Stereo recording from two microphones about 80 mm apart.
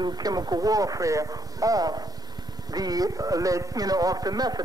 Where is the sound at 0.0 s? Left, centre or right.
Right.